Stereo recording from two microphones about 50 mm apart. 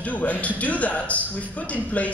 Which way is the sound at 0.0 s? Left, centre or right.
Left.